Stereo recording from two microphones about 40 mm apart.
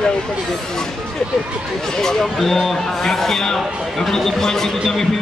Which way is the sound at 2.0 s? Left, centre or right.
Centre.